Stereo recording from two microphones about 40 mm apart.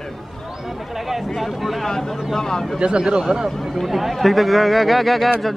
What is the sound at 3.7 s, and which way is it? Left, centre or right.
Speech, centre.